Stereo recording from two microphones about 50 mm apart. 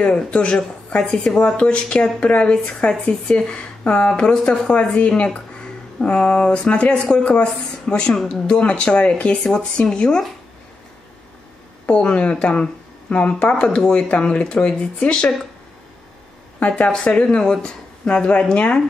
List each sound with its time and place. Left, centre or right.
0.0 s speech: left
11.8 s speech: left
16.5 s a woman's voice: left